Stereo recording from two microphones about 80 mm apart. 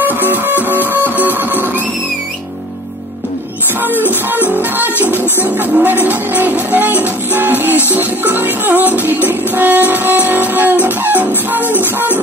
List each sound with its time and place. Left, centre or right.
0.0 s music: right
3.8 s music: right
5.2 s music: left
5.6 s music: right